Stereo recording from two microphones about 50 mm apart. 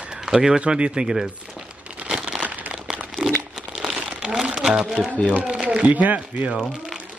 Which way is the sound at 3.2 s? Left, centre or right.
Centre.